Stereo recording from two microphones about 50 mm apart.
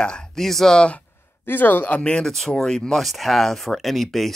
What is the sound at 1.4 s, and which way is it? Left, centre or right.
Speech, left.